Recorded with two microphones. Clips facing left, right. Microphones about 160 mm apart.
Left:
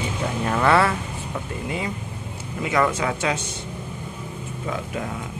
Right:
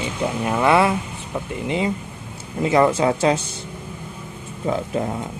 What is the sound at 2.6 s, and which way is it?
Speech, 30° right (ahead or behind).